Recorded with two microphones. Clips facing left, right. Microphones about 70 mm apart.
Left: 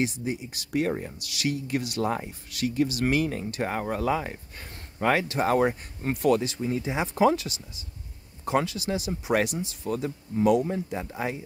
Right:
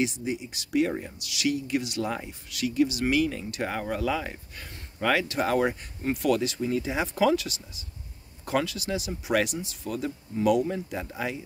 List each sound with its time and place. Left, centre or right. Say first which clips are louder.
0.0 s speech: even; left